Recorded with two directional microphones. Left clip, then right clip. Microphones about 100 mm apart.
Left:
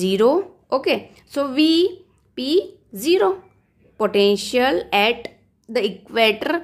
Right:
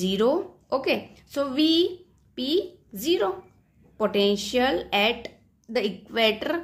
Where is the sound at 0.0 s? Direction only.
35° left (ahead or behind).